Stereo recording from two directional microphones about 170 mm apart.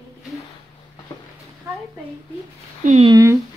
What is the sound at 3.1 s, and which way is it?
Speech, 20° right (ahead or behind).